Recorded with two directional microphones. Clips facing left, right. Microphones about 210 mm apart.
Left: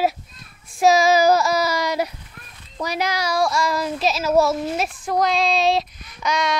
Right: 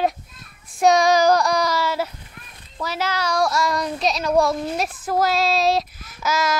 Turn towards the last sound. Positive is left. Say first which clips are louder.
# even
turn(degrees=-5)  # may be behind; listen again after turning